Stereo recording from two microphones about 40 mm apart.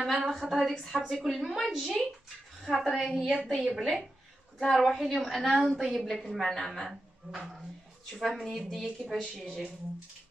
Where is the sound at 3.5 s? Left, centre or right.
Centre.